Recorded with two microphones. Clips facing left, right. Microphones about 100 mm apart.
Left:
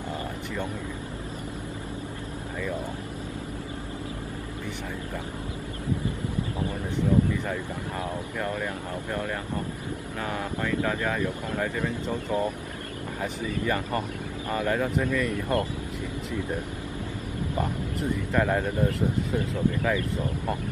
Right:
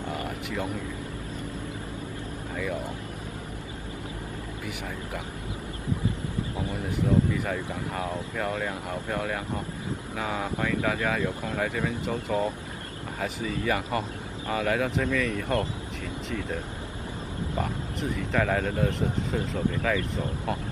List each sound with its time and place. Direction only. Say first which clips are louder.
8.6 s speech: even; 15° right (ahead or behind)
12.3 s speech: even; 20° right (ahead or behind)
13.7 s speech: right 1 dB; 10° right (ahead or behind)
14.7 s speech: even; centre (ahead or behind)
18.3 s speech: even; 5° left (ahead or behind)